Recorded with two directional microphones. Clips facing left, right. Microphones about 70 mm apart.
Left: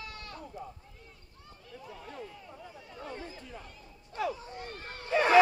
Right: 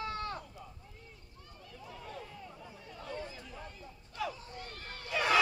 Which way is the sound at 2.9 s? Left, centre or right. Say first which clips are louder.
Even; left.